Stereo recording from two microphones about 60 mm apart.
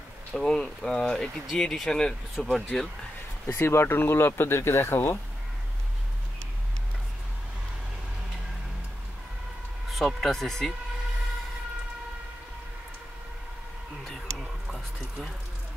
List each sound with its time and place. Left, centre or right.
0.3 s speech: centre
3.4 s speech: left
9.8 s speech: centre
14.0 s a sound: centre